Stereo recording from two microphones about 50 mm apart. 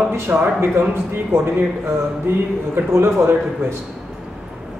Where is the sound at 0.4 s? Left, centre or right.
Right.